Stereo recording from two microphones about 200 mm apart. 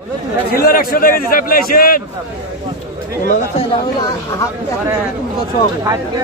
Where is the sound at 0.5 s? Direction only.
50° left (ahead or behind).